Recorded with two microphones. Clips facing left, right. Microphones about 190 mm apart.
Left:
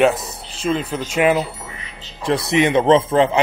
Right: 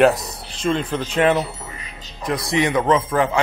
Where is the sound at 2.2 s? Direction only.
25° left (ahead or behind).